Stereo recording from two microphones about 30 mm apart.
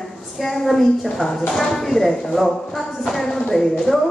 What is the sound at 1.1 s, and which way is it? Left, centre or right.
Speech, centre.